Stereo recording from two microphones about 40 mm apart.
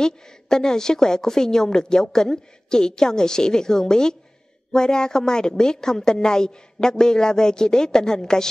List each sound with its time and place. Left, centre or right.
0.0 s a woman's voice: centre